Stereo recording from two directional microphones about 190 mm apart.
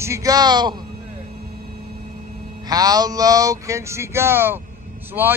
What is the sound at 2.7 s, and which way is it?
Speech, 20° right (ahead or behind).